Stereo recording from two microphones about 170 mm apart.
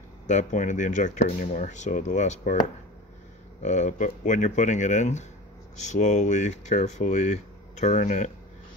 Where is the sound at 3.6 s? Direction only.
45° left (ahead or behind).